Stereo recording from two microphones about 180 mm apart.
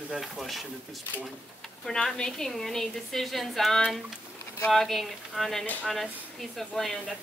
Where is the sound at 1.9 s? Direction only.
5° left (ahead or behind).